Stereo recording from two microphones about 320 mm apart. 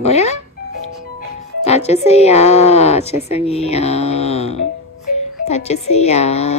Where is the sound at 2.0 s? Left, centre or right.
Centre.